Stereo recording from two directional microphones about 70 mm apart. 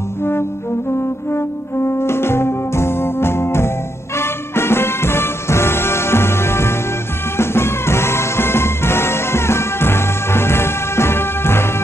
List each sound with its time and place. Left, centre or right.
0.2 s music: left
1.9 s music: left